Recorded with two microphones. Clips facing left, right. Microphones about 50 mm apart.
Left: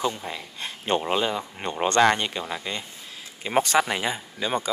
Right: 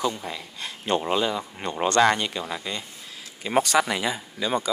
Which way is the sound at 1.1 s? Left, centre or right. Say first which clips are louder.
Even; left.